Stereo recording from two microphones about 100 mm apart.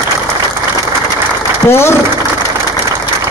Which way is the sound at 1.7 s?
25° left (ahead or behind).